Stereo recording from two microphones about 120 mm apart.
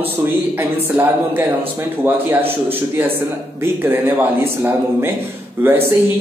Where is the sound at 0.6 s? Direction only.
20° right (ahead or behind).